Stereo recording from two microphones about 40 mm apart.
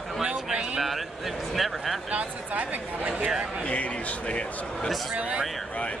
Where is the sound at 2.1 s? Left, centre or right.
Right.